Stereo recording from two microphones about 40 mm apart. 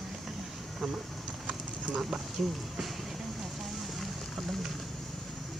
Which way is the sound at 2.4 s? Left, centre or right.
Centre.